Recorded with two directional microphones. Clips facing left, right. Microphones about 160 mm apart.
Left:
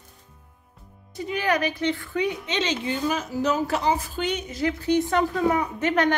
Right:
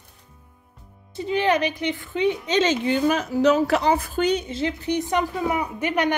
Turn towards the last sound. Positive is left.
turn(degrees=-10)  # may be behind; listen again after turning